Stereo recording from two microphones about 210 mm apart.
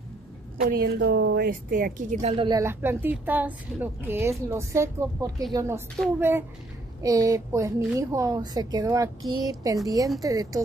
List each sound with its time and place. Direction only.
0.6 s a woman's voice: 45° right (ahead or behind)
2.3 s speech: 20° right (ahead or behind)